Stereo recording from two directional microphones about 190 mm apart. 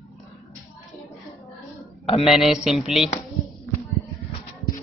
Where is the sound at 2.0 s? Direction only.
30° left (ahead or behind).